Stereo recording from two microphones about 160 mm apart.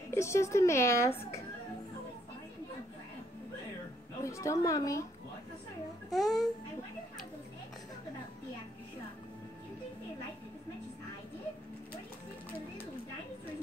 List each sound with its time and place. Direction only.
0.1 s speech: 15° left (ahead or behind)
4.2 s a woman's voice: 20° left (ahead or behind)
6.1 s speech: centre (ahead or behind)